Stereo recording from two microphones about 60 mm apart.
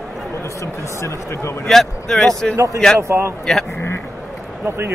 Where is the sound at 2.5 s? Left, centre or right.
Right.